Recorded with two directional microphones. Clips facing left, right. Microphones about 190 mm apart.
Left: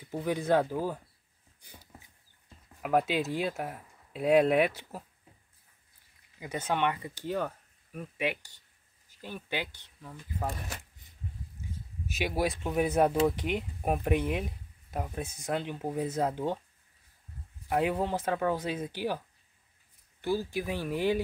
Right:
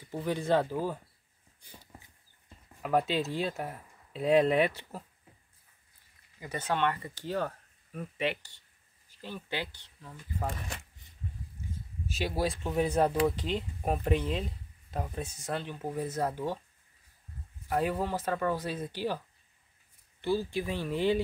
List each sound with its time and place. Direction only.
0.0 s speech: 10° left (ahead or behind)
1.6 s a sound: 15° left (ahead or behind)
2.8 s speech: 10° left (ahead or behind)
6.4 s speech: 15° left (ahead or behind)
12.3 s speech: 15° left (ahead or behind)
17.6 s speech: 15° left (ahead or behind)